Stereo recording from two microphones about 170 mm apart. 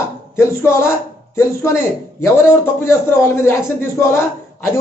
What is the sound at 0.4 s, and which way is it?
A man's voice, 15° left (ahead or behind).